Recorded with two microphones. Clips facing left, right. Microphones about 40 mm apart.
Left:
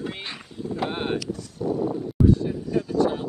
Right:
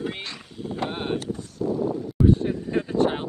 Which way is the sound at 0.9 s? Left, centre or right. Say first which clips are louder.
Left 1 dB; centre.